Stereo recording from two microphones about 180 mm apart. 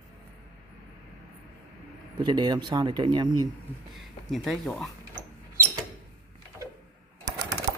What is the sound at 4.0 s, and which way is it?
Speech, centre (ahead or behind).